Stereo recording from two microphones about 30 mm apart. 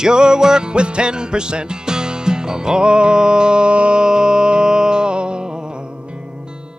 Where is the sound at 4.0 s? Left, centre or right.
Right.